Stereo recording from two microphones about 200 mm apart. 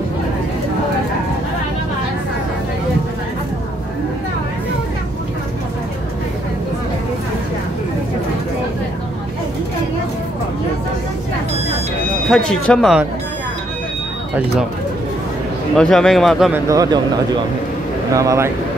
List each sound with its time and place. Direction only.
12.3 s a man's voice: 5° left (ahead or behind)
15.7 s a man's voice: centre (ahead or behind)
16.6 s speech: 20° right (ahead or behind)
18.1 s speech: 15° right (ahead or behind)